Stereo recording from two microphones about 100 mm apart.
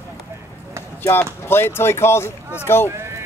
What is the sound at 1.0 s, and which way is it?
Speech, 25° left (ahead or behind).